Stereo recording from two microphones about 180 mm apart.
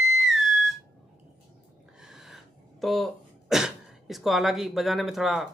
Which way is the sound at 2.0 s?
5° right (ahead or behind).